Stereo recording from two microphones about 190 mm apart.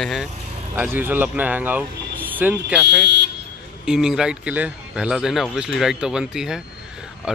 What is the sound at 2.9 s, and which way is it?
Speech, 65° right (ahead or behind).